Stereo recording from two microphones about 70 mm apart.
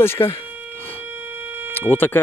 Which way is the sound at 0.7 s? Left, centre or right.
Left.